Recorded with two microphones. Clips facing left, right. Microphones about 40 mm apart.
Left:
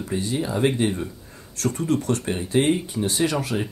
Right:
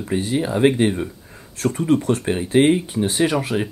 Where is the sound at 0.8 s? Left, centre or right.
Right.